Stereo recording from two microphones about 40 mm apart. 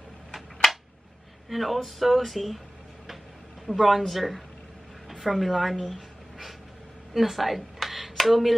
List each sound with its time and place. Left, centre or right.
0.3 s a sound: centre
1.5 s speech: centre
3.6 s speech: centre